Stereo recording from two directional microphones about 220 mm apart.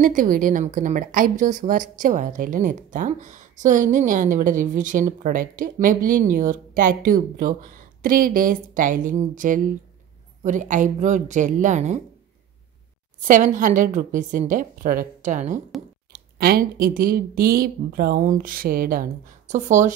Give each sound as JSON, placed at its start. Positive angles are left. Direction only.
{"t": 0.0, "sound": "a woman's voice", "side_deg": -40}
{"t": 13.2, "sound": "a woman's voice", "side_deg": -35}
{"t": 16.1, "sound": "a woman's voice", "side_deg": -45}